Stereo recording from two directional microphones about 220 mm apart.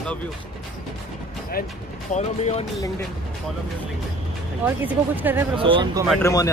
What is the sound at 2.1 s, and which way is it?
Speech, 30° left (ahead or behind).